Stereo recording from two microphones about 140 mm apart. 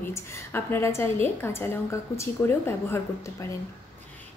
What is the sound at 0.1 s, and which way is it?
A woman's voice, 15° left (ahead or behind).